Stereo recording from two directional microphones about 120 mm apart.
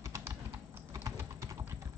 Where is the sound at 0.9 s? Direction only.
25° right (ahead or behind).